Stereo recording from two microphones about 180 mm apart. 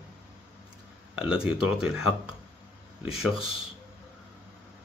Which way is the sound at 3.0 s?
5° right (ahead or behind).